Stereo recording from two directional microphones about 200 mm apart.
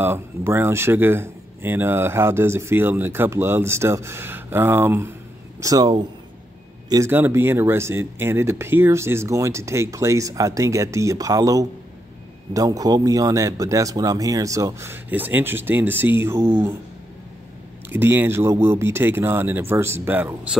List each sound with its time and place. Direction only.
0.0 s speech: 10° right (ahead or behind)
17.8 s speech: 10° right (ahead or behind)